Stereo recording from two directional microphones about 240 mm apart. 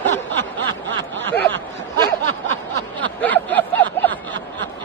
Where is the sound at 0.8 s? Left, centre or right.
Right.